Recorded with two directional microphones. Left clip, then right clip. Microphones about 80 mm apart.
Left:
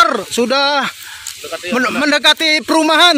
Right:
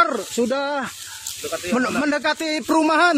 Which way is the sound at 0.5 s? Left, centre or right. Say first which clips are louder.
Left 9 dB; left.